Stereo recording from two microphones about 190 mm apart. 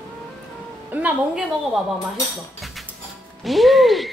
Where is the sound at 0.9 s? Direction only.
5° right (ahead or behind).